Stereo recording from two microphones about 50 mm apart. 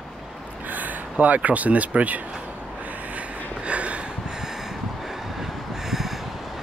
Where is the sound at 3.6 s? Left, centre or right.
Right.